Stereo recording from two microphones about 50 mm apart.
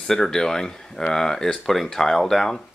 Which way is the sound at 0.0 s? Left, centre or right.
Centre.